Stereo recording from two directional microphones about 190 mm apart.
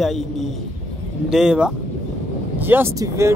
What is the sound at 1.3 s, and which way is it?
Speech, 5° right (ahead or behind).